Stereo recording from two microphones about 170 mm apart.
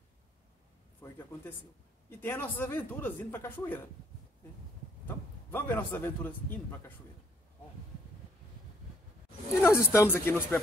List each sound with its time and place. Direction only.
1.0 s a sound: 15° left (ahead or behind)
2.0 s speech: 15° left (ahead or behind)
5.0 s speech: 10° left (ahead or behind)
9.6 s speech: 15° left (ahead or behind)